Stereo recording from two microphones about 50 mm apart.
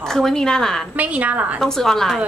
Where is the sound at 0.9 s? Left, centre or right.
Right.